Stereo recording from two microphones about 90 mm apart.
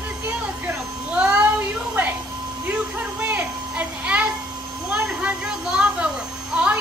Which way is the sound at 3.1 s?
15° right (ahead or behind).